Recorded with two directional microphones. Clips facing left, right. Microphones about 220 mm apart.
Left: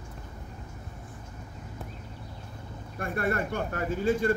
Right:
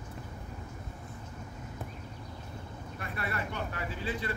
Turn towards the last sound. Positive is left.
turn(degrees=45)  # may be behind; listen again after turning